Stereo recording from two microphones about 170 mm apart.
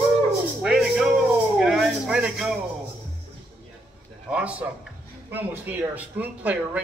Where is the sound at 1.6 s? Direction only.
5° right (ahead or behind).